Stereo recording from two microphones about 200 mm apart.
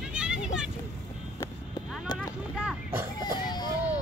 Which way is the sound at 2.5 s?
5° right (ahead or behind).